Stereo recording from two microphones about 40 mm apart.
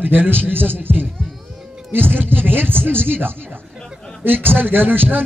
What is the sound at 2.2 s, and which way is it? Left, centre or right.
A man's voice, right.